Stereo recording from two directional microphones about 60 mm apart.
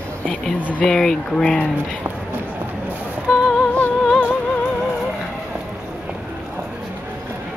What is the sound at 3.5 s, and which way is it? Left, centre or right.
Music, left.